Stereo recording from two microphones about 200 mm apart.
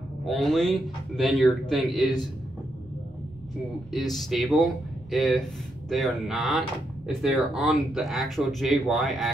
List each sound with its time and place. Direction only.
0.2 s speech: centre (ahead or behind)
3.9 s speech: centre (ahead or behind)